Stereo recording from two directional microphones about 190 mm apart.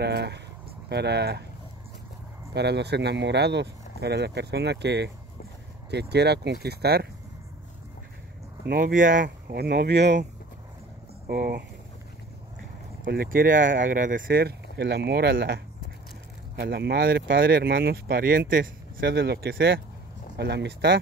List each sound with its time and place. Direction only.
0.0 s speech: 60° right (ahead or behind)
2.5 s speech: 60° right (ahead or behind)
8.6 s speech: 55° right (ahead or behind)
9.2 s speech: 60° right (ahead or behind)
11.2 s speech: 50° right (ahead or behind)
13.0 s speech: 55° right (ahead or behind)